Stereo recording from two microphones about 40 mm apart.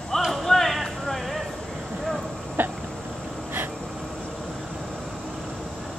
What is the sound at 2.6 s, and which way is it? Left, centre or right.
Cough, right.